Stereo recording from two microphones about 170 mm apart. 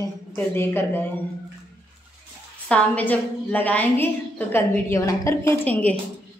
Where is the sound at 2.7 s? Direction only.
10° left (ahead or behind).